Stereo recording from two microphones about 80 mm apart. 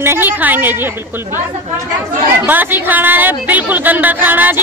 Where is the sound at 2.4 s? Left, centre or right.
Right.